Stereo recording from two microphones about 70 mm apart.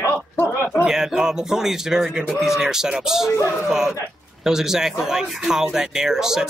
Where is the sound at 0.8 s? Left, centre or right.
Centre.